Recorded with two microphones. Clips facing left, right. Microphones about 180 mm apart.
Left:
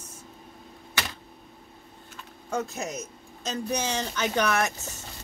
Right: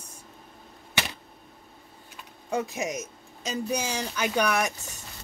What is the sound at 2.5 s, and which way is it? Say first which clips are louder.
Speech: right 2 dB; 15° right (ahead or behind).